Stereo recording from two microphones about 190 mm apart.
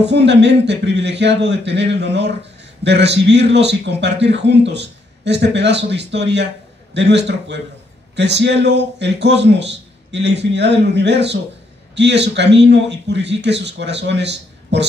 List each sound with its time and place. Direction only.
0.0 s a man's voice: 65° right (ahead or behind)